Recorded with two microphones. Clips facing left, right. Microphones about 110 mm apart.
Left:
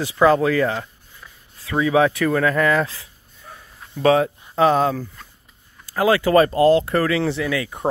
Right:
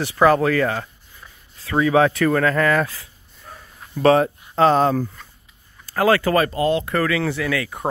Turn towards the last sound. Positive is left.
turn(degrees=20)  # may be behind; listen again after turning